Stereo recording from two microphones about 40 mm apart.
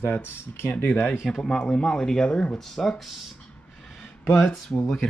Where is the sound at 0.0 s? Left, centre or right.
Left.